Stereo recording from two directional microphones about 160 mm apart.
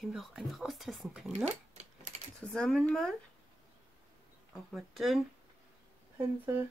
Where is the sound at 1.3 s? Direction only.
45° right (ahead or behind).